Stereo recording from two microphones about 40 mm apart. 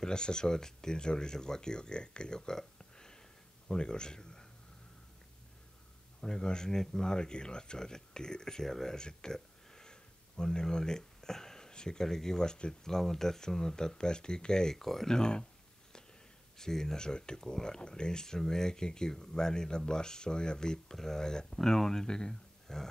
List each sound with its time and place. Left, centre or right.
0.0 s speech: centre
6.2 s speech: centre
16.5 s speech: centre
22.3 s a sound: centre